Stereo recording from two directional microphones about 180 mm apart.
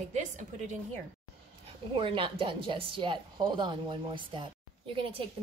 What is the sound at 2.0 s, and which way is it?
Speech, 30° right (ahead or behind).